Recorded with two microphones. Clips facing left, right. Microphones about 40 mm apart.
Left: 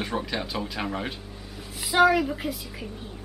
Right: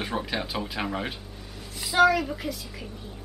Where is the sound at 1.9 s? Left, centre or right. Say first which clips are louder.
Left 1 dB; centre.